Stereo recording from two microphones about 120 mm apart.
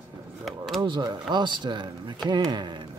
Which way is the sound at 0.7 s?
35° right (ahead or behind).